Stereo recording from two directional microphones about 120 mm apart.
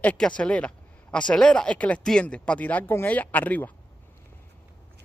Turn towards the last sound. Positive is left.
turn(degrees=15)  # may be behind; listen again after turning